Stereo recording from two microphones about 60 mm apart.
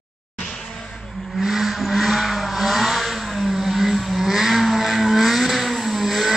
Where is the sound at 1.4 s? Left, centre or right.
Centre.